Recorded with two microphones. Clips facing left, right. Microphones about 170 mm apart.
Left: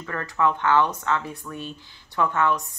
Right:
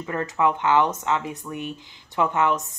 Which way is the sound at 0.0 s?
20° right (ahead or behind).